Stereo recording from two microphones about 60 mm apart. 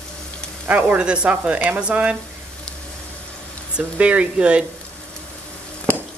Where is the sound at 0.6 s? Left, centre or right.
Right.